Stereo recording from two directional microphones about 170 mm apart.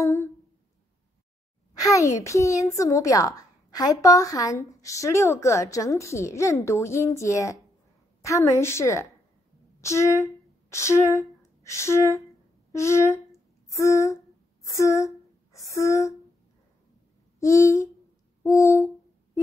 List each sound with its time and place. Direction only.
1.7 s a woman's voice: 20° left (ahead or behind)
17.4 s a woman's voice: 20° left (ahead or behind)